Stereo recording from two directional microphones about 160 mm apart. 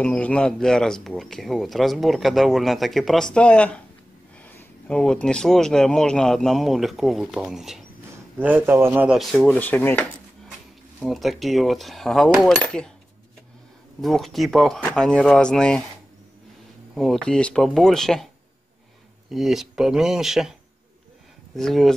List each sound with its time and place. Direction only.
0.0 s speech: 5° left (ahead or behind)
11.0 s speech: centre (ahead or behind)
14.0 s speech: centre (ahead or behind)
16.9 s speech: centre (ahead or behind)
19.3 s speech: centre (ahead or behind)
21.5 s speech: centre (ahead or behind)